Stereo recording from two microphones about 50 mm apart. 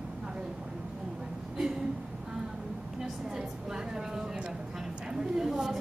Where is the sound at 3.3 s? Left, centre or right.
Centre.